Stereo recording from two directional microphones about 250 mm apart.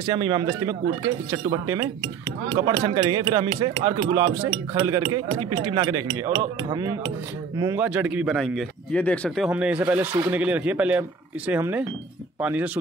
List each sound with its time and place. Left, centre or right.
0.0 s a man's voice: centre
9.5 s a man's voice: centre